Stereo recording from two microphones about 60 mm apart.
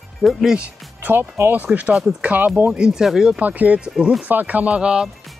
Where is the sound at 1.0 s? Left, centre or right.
Right.